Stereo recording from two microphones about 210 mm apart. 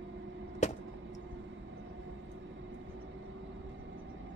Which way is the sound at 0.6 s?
35° left (ahead or behind).